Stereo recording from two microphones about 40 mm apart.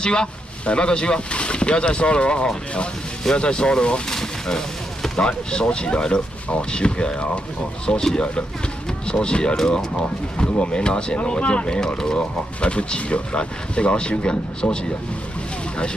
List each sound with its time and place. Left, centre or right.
0.0 s speech: left
4.1 s speech: centre